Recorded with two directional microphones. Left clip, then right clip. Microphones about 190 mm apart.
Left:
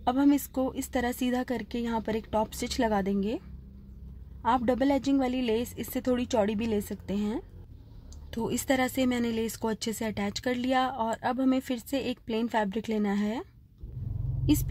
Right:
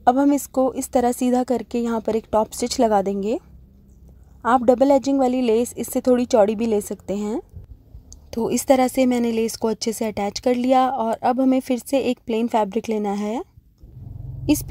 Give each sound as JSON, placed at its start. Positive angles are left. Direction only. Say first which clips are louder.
{"t": 0.0, "sound": "speech", "louder": "right 8 dB", "side_deg": -25}